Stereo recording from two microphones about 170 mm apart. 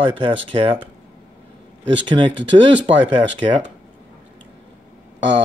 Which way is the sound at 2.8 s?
30° right (ahead or behind).